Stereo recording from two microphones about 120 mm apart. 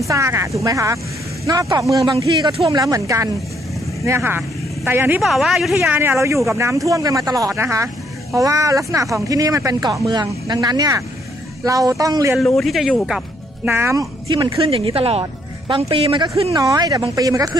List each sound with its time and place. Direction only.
0.1 s speech: 25° right (ahead or behind)
2.0 s speech: 40° right (ahead or behind); by 5.2 s 15° right (ahead or behind)
5.2 s speech: centre (ahead or behind)
5.9 s speech: 20° right (ahead or behind)
12.4 s speech: centre (ahead or behind)
13.7 s speech: 20° right (ahead or behind)
14.6 s speech: 50° right (ahead or behind)
16.5 s speech: 30° right (ahead or behind)